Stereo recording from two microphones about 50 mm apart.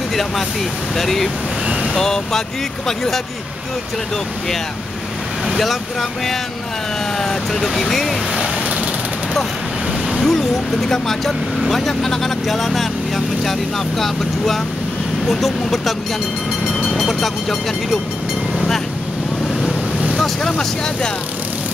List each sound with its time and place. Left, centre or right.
0.9 s speech: centre
5.6 s speech: centre
10.2 s speech: centre
16.9 s speech: centre
20.2 s speech: centre